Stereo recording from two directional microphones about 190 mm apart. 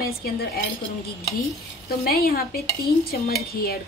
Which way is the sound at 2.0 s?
50° left (ahead or behind).